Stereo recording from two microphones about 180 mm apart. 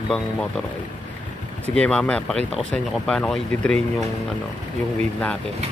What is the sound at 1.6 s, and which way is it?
Speech, 5° left (ahead or behind).